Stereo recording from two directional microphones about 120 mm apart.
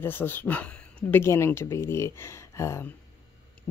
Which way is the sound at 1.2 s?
20° left (ahead or behind).